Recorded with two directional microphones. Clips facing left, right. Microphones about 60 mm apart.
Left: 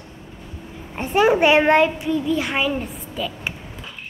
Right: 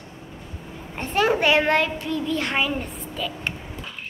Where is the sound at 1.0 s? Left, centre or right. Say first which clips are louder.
Left 5 dB; centre.